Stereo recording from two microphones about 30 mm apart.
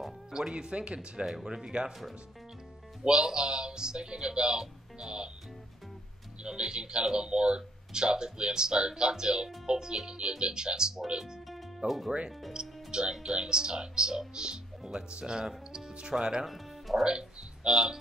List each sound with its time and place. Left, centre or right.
0.3 s speech: right
1.3 s speech: right
3.0 s speech: right
6.4 s speech: right
11.8 s speech: right
12.5 s music: right
13.1 s speech: right
16.4 s speech: centre
17.0 s speech: right